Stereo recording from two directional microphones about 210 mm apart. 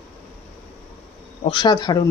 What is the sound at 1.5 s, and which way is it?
Speech, 20° left (ahead or behind).